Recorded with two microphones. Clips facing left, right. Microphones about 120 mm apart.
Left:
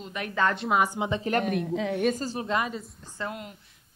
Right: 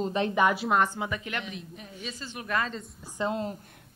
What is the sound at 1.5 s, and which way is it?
Speech, 80° left.